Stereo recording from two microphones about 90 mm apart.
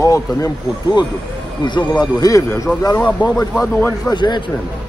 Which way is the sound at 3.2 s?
55° left (ahead or behind).